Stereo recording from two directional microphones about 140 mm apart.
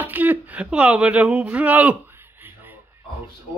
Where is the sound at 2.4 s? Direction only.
15° right (ahead or behind).